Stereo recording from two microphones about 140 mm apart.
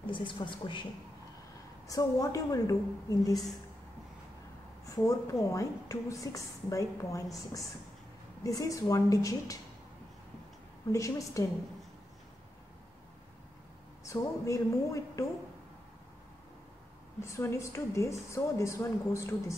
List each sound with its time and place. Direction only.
0.0 s a woman's voice: 35° left (ahead or behind)
1.9 s a woman's voice: 25° left (ahead or behind)
4.8 s a woman's voice: 25° left (ahead or behind)
10.9 s a woman's voice: 25° left (ahead or behind)
14.0 s a woman's voice: 20° left (ahead or behind)
17.2 s a woman's voice: 20° left (ahead or behind)